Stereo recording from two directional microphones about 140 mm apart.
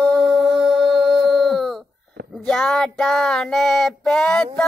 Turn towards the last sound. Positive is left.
turn(degrees=5)  # may be behind; listen again after turning